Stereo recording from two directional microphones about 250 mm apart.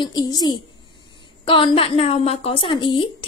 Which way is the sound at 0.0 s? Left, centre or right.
Centre.